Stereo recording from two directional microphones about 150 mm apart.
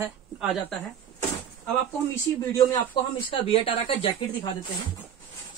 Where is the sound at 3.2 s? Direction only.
35° left (ahead or behind).